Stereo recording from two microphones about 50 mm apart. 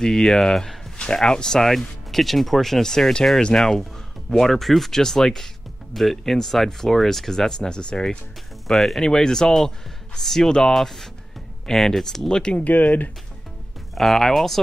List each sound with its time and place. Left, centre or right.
0.0 s speech: centre
0.9 s speech: centre
8.6 s speech: centre
12.6 s speech: left
13.9 s speech: centre